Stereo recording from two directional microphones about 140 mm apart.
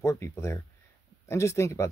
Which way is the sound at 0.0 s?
20° left (ahead or behind).